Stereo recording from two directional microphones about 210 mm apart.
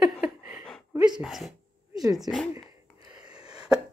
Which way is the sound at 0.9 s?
20° right (ahead or behind).